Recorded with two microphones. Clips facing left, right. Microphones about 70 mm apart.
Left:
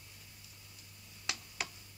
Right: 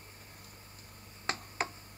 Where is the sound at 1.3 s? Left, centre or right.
Right.